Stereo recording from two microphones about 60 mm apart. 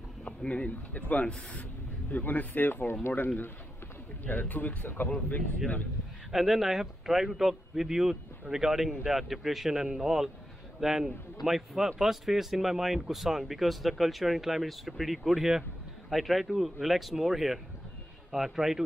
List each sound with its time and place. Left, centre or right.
0.2 s speech: centre; by 3.1 s left
4.2 s speech: left
6.3 s speech: centre